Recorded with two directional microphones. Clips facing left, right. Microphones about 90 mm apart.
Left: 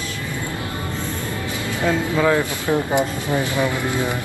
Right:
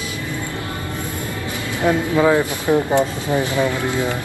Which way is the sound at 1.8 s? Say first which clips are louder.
Right 3 dB; 15° right (ahead or behind).